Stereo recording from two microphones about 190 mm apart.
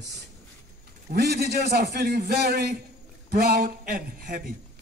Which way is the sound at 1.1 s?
60° right (ahead or behind).